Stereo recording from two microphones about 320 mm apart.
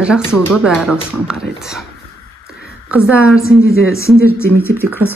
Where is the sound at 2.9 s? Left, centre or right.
Centre.